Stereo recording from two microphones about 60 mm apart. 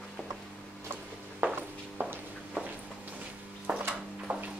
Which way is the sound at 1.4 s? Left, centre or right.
Right.